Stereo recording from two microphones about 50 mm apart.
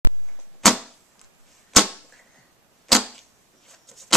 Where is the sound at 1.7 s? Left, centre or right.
Centre.